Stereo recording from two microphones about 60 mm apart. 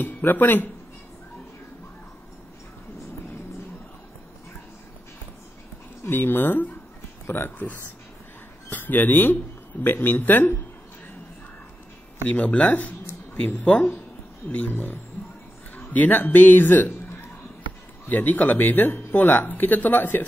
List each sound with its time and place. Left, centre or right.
0.0 s speech: left
6.0 s speech: left
12.3 s a man's voice: left
18.1 s speech: left